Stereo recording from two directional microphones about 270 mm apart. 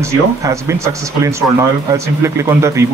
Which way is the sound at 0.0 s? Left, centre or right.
Centre.